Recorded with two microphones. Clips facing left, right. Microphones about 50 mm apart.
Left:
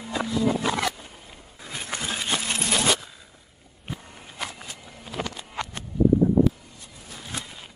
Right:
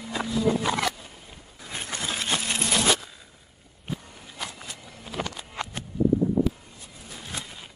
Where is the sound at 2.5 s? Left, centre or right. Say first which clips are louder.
Even; centre.